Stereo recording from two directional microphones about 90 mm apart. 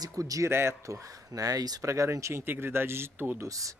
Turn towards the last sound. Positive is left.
turn(degrees=-40)  # may be behind; listen again after turning